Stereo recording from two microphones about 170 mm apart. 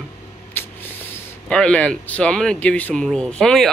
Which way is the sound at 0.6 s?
10° left (ahead or behind).